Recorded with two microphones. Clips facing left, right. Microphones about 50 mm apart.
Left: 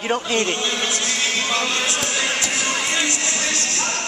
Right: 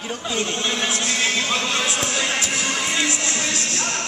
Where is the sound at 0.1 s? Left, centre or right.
Left.